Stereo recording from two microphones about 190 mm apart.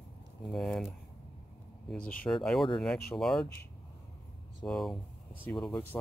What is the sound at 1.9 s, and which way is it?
Speech, 5° left (ahead or behind).